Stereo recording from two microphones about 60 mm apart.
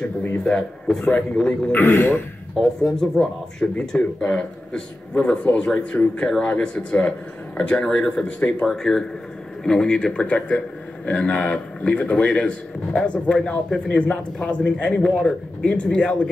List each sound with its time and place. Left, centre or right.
0.4 s a man's voice: centre
1.7 s a man's voice: left
2.5 s a man's voice: centre